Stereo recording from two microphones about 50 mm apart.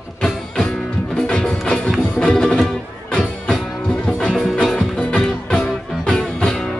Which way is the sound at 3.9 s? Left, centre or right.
Centre.